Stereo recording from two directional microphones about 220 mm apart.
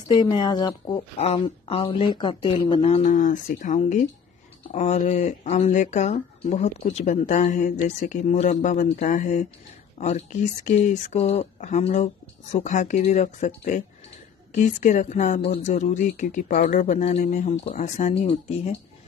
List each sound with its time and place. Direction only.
0.1 s speech: 20° left (ahead or behind)